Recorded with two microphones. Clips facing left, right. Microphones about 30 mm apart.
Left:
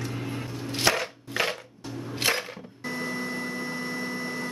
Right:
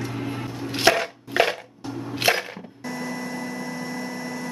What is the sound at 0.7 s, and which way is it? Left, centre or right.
Chopping, right.